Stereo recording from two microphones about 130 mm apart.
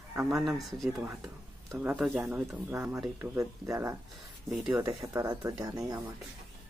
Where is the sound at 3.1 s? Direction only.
20° right (ahead or behind).